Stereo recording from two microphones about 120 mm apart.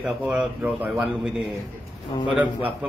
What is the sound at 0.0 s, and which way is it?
Speech, 10° right (ahead or behind).